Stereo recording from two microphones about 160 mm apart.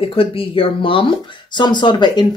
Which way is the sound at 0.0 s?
35° left (ahead or behind).